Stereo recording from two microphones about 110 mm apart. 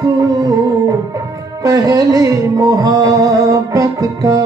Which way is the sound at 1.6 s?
30° right (ahead or behind).